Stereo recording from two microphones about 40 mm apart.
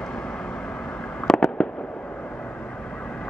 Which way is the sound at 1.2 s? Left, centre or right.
Centre.